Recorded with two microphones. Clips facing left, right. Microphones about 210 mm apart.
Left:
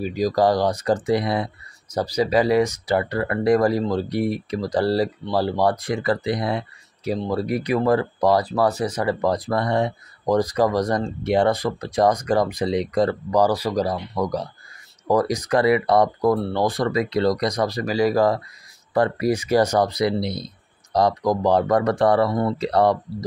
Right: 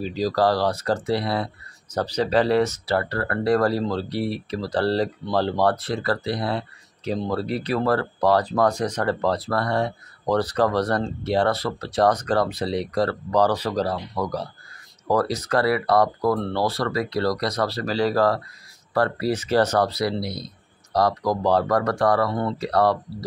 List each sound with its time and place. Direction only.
0.0 s speech: 15° left (ahead or behind)